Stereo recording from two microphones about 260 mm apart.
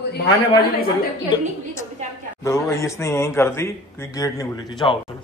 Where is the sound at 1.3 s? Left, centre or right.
Centre.